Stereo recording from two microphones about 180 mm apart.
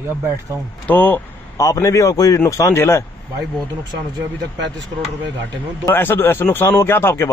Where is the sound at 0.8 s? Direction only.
10° left (ahead or behind).